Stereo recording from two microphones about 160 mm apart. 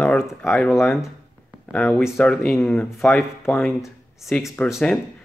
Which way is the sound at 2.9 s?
Centre (ahead or behind).